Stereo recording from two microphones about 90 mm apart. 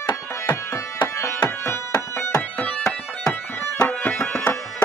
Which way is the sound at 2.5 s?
15° left (ahead or behind).